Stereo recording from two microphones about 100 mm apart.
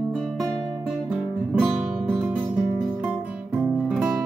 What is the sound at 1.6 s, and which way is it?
Music, 15° right (ahead or behind).